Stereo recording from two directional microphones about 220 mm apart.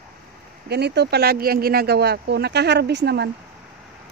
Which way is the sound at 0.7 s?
50° right (ahead or behind).